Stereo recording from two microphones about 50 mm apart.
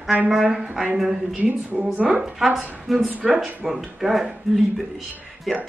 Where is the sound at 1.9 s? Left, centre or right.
Right.